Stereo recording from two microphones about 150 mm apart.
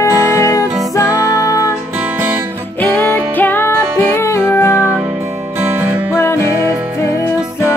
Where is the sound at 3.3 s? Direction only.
10° left (ahead or behind).